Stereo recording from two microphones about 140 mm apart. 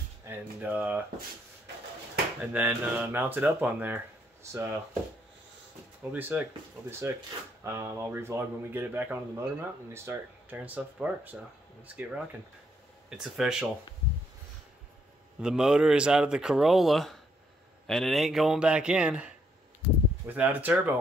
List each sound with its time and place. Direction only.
0.2 s speech: 15° right (ahead or behind)
2.5 s speech: 15° right (ahead or behind)
6.1 s speech: 15° right (ahead or behind)
15.4 s speech: 5° right (ahead or behind)